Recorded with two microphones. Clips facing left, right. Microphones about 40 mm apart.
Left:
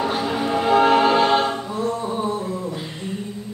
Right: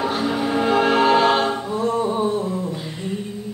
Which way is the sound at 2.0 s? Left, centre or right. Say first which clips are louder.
Right 3 dB; right.